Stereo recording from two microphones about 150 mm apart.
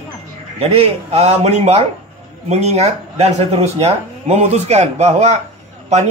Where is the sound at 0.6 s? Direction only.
45° right (ahead or behind).